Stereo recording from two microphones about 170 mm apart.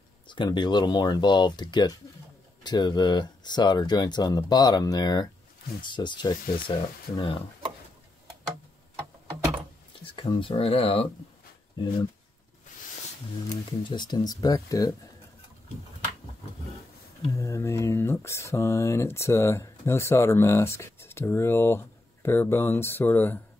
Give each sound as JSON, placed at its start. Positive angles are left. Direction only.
{"t": 0.3, "sound": "speech", "side_deg": 25}
{"t": 10.0, "sound": "speech", "side_deg": 25}
{"t": 13.8, "sound": "speech", "side_deg": 25}
{"t": 17.3, "sound": "speech", "side_deg": 15}